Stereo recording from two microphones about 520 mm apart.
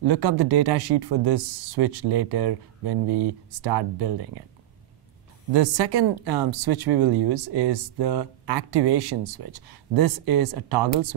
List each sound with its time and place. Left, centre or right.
0.0 s speech: right
5.5 s speech: right